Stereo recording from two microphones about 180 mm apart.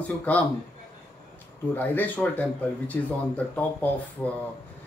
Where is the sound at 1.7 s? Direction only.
10° left (ahead or behind).